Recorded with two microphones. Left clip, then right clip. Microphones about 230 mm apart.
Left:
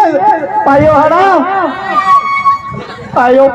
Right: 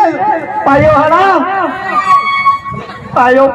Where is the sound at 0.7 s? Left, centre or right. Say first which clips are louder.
Even; right.